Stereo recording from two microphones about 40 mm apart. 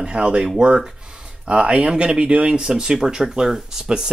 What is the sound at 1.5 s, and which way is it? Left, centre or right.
Speech, right.